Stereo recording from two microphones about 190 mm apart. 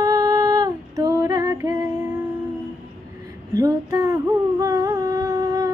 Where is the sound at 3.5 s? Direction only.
20° right (ahead or behind).